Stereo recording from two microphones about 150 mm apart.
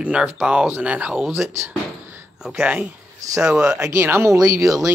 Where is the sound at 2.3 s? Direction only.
5° right (ahead or behind).